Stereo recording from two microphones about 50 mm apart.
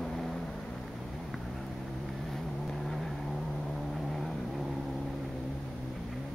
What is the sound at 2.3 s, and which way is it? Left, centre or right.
Vehicle, centre.